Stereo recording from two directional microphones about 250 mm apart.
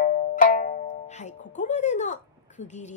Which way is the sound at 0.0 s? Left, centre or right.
Left.